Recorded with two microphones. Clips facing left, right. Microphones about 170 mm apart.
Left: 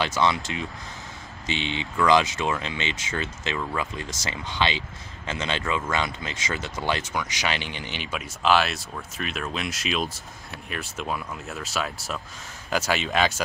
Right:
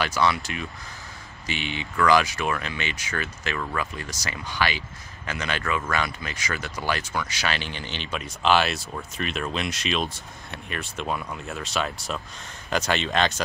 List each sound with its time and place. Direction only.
0.0 s speech: 20° left (ahead or behind); by 13.4 s 5° left (ahead or behind)